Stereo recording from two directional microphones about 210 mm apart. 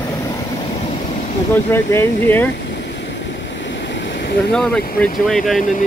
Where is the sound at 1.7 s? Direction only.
10° left (ahead or behind).